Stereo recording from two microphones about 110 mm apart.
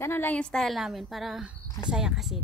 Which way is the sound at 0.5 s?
Centre (ahead or behind).